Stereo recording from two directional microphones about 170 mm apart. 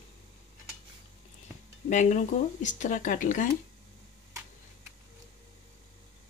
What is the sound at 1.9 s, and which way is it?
Speech, 45° left (ahead or behind).